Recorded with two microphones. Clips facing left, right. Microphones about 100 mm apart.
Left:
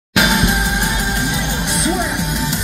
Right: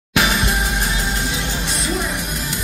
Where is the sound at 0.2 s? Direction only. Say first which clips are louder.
Left 4 dB; 15° left (ahead or behind).